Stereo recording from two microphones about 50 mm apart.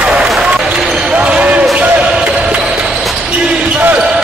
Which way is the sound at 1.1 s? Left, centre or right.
Right.